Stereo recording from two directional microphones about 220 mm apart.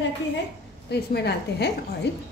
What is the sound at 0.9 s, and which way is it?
Speech, 50° left (ahead or behind).